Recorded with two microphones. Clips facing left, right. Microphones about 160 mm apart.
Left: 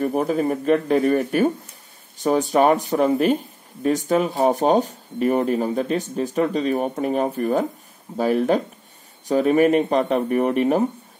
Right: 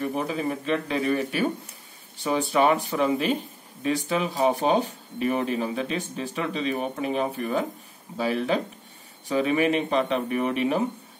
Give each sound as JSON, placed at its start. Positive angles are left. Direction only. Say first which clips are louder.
{"t": 0.0, "sound": "speech", "louder": "left 6 dB", "side_deg": 45}